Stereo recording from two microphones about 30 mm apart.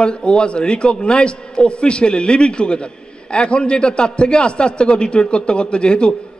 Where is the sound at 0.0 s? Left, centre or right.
Left.